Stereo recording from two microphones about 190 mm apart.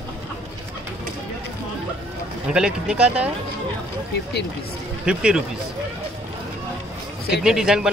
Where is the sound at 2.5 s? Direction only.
5° right (ahead or behind).